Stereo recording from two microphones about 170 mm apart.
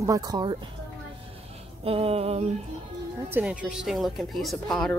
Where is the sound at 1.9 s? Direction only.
35° right (ahead or behind).